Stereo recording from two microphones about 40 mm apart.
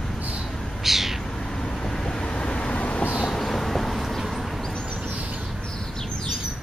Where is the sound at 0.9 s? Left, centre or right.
Centre.